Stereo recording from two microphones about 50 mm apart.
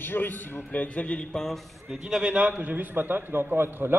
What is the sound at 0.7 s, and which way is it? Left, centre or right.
Speech, left.